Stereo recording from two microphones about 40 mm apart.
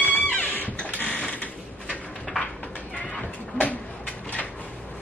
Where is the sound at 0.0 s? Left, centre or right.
Left.